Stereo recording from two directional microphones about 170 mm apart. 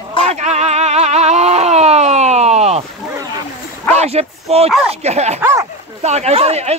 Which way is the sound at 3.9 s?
40° right (ahead or behind).